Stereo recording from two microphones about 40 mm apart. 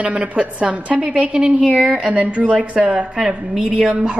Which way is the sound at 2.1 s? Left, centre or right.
Right.